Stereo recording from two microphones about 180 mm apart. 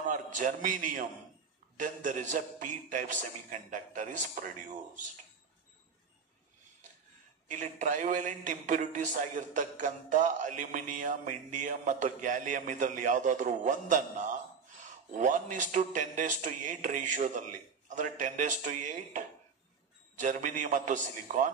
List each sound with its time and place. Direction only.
0.1 s a man's voice: 45° right (ahead or behind)
7.4 s a man's voice: 45° right (ahead or behind)